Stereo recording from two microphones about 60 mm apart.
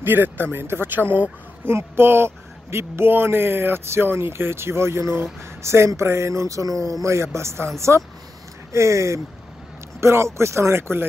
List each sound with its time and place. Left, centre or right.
0.0 s speech: right
8.7 s speech: right